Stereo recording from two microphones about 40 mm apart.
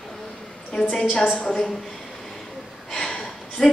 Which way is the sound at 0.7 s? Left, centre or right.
Left.